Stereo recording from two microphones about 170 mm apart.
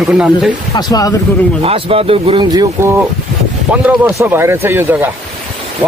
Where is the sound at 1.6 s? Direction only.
35° right (ahead or behind).